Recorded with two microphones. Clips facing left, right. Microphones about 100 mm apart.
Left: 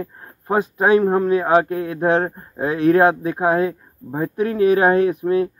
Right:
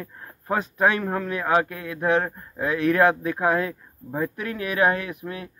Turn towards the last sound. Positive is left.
turn(degrees=30)  # may be behind; listen again after turning